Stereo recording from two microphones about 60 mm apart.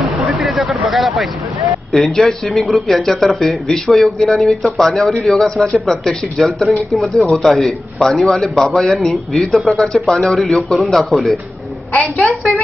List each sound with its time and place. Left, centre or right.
0.4 s a sound: centre
1.9 s a man's voice: centre
11.9 s a woman's voice: left